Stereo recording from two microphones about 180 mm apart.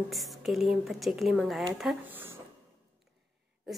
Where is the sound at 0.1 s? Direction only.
Centre (ahead or behind).